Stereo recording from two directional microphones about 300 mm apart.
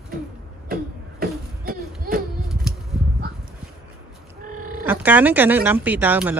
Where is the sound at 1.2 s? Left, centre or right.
Right.